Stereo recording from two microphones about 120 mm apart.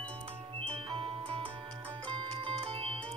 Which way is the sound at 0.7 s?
50° right (ahead or behind).